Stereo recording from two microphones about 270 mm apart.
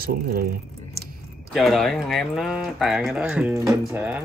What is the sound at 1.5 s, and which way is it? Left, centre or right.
Speech, centre.